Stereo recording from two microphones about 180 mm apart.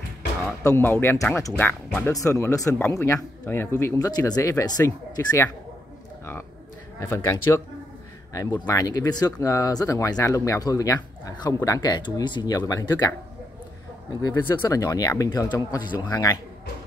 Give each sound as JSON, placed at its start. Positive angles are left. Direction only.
{"t": 0.7, "sound": "speech", "side_deg": 10}
{"t": 7.1, "sound": "speech", "side_deg": 15}
{"t": 14.2, "sound": "speech", "side_deg": 15}